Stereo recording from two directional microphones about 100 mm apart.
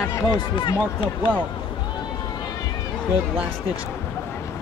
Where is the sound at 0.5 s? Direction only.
55° left (ahead or behind).